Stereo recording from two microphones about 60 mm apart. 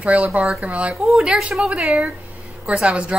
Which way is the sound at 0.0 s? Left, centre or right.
Right.